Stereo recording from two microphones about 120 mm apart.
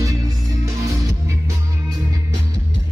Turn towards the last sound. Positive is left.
turn(degrees=-30)  # may be behind; listen again after turning